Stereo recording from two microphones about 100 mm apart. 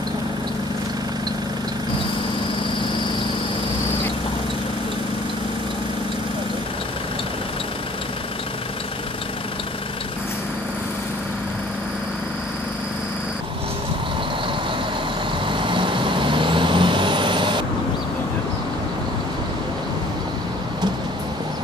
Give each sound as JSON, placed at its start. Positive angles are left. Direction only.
{"t": 15.4, "sound": "vehicle", "side_deg": -55}